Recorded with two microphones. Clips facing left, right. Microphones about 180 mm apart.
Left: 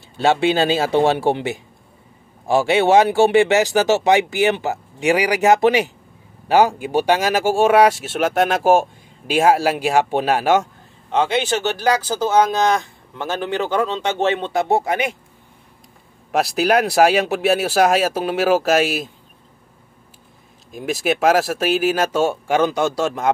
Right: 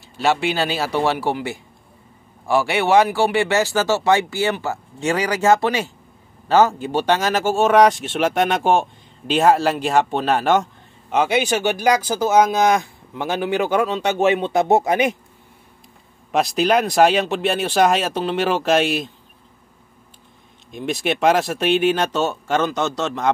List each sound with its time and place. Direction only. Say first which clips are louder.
0.2 s speech: left 3 dB; 25° left (ahead or behind)
11.1 s speech: even; 10° right (ahead or behind)
16.3 s speech: even; 5° left (ahead or behind)
20.7 s speech: left 2 dB; 5° left (ahead or behind)